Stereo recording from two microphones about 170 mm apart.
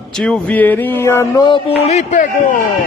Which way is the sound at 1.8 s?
40° left (ahead or behind).